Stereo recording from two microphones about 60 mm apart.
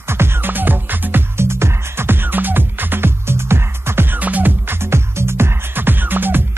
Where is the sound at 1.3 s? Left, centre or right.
Right.